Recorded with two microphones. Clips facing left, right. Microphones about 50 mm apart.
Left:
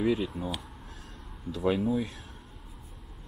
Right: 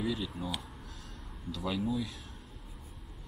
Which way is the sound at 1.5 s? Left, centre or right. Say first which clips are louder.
Left 6 dB; left.